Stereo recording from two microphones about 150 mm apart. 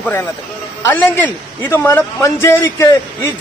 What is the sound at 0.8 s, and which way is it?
Speech, 15° left (ahead or behind).